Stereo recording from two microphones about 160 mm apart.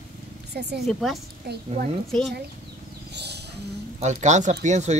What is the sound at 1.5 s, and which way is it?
Speech, 90° right.